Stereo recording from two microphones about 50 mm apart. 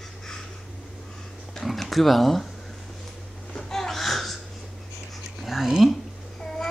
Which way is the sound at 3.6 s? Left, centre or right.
Centre.